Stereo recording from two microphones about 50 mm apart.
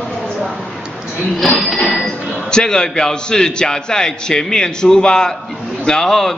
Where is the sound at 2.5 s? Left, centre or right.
Centre.